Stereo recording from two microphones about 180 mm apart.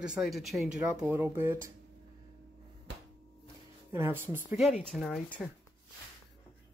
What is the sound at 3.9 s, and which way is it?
Speech, 15° right (ahead or behind).